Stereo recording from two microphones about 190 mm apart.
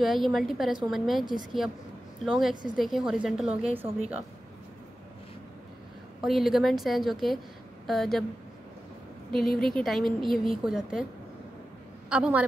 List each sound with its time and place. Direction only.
0.0 s a woman's voice: centre (ahead or behind)
2.2 s a woman's voice: centre (ahead or behind)
3.4 s a woman's voice: 30° right (ahead or behind)
6.2 s a woman's voice: centre (ahead or behind)
9.3 s a woman's voice: 5° left (ahead or behind)
12.1 s a woman's voice: 5° right (ahead or behind)